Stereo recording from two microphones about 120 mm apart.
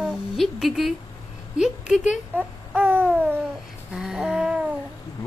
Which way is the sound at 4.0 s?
5° right (ahead or behind).